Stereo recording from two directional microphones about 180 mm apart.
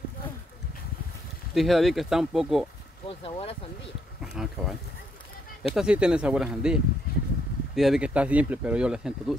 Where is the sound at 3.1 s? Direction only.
30° left (ahead or behind).